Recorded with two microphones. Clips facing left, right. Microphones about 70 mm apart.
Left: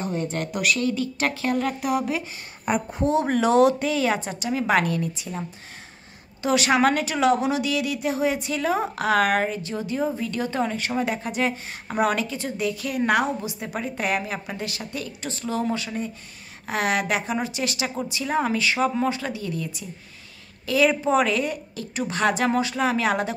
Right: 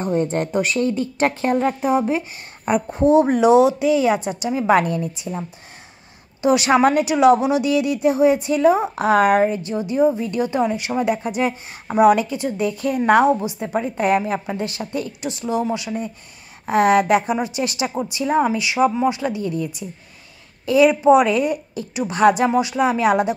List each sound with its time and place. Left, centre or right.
0.0 s a woman's voice: right
6.4 s a woman's voice: right
15.2 s a woman's voice: centre